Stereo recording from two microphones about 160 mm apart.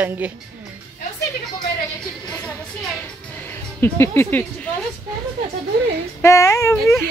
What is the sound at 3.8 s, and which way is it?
Speech, 15° left (ahead or behind).